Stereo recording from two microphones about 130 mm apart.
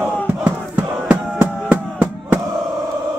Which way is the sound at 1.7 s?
10° right (ahead or behind).